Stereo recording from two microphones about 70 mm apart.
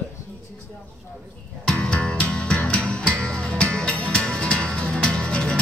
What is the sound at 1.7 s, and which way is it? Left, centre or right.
Music, centre.